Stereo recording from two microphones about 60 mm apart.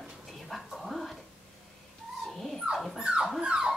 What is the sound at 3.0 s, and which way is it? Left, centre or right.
Dog, centre.